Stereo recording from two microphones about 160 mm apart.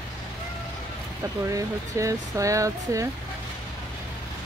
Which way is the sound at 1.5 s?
20° right (ahead or behind).